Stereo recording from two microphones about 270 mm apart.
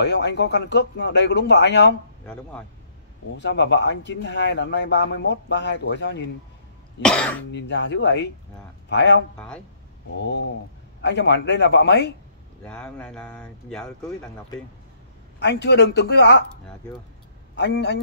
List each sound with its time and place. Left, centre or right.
0.0 s speech: left
3.3 s speech: left
7.0 s speech: centre
7.5 s speech: left
11.0 s speech: left
12.6 s speech: centre
15.3 s speech: left
17.6 s speech: left